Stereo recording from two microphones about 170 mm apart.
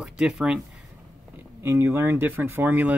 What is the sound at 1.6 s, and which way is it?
Speech, 15° right (ahead or behind).